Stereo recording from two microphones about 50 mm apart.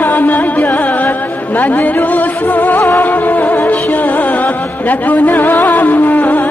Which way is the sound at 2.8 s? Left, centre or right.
Left.